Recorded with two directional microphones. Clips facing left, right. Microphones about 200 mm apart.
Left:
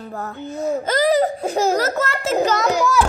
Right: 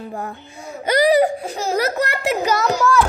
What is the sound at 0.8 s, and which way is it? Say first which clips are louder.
Laughter: right 4 dB; 15° right (ahead or behind).